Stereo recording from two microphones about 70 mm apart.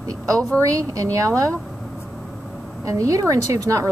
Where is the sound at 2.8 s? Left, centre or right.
Right.